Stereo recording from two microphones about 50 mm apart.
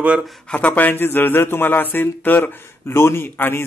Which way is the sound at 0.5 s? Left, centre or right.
Left.